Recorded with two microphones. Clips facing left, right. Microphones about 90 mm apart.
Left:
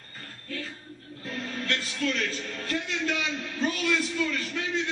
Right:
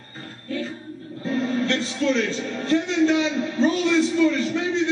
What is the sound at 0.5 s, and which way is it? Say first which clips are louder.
Music: right 9 dB; 30° right (ahead or behind).